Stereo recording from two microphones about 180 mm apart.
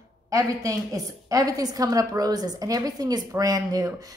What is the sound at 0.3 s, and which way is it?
A woman's voice, 20° right (ahead or behind).